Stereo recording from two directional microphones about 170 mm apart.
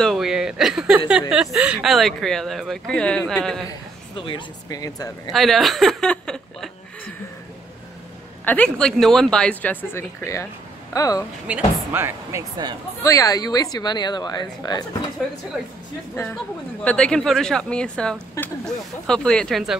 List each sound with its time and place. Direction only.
0.0 s a sound: centre (ahead or behind)
1.3 s speech: 5° right (ahead or behind)
4.2 s speech: 30° left (ahead or behind)
5.3 s speech: centre (ahead or behind)
8.5 s speech: 5° left (ahead or behind)
11.4 s speech: 10° right (ahead or behind)
13.0 s speech: 20° left (ahead or behind)
16.8 s speech: 5° left (ahead or behind)
18.4 s speech: 15° left (ahead or behind)
19.0 s speech: 5° left (ahead or behind)